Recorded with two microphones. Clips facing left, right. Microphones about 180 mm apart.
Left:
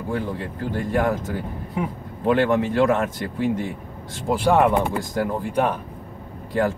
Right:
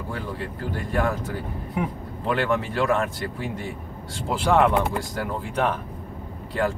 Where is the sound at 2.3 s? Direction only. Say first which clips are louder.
Left 5 dB; 20° left (ahead or behind).